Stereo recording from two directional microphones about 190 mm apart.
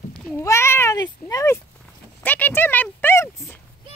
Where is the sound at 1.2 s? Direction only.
15° left (ahead or behind).